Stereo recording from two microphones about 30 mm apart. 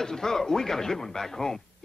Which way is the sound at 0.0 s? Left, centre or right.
Centre.